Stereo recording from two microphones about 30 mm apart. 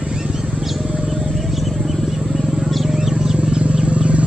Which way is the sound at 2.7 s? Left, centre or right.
Centre.